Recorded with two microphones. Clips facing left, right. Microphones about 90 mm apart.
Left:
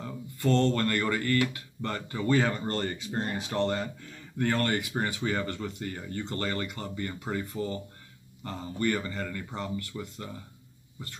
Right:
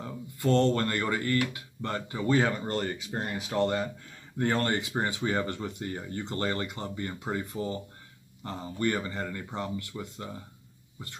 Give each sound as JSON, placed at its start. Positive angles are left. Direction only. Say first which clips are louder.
{"t": 0.0, "sound": "speech", "louder": "even", "side_deg": -15}
{"t": 4.4, "sound": "speech", "louder": "even", "side_deg": -20}